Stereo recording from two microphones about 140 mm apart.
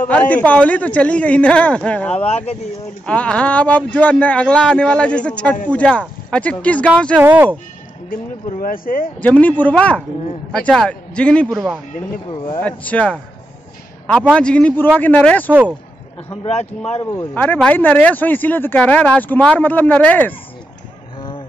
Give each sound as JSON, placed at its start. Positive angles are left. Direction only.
{"t": 0.1, "sound": "speech", "side_deg": 10}
{"t": 2.1, "sound": "speech", "side_deg": 45}
{"t": 3.1, "sound": "speech", "side_deg": 10}
{"t": 7.2, "sound": "speech", "side_deg": -15}
{"t": 8.5, "sound": "speech", "side_deg": 75}
{"t": 9.2, "sound": "speech", "side_deg": 10}
{"t": 11.5, "sound": "speech", "side_deg": -5}
{"t": 12.3, "sound": "speech", "side_deg": 35}
{"t": 12.5, "sound": "speech", "side_deg": 10}
{"t": 14.3, "sound": "speech", "side_deg": 10}
{"t": 17.3, "sound": "speech", "side_deg": 10}